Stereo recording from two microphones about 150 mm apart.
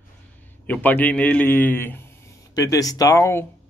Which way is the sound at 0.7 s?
10° left (ahead or behind).